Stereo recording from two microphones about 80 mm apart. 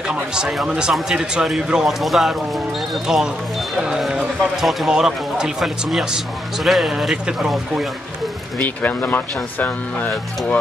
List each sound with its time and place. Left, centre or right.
0.0 s speech: centre
8.5 s speech: left